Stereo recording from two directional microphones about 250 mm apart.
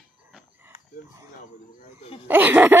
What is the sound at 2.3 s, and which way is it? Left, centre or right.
Speech, centre.